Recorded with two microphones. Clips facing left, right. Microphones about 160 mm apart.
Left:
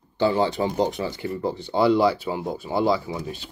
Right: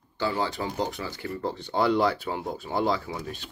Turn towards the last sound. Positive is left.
turn(degrees=5)  # may be behind; listen again after turning